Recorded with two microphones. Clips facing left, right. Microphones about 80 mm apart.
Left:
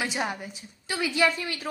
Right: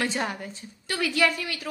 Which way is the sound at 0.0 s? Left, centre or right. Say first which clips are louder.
Right 1 dB; centre.